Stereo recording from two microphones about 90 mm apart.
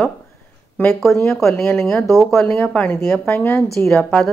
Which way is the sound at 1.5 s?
25° left (ahead or behind).